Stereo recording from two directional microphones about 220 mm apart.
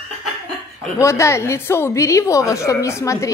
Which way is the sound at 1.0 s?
15° left (ahead or behind).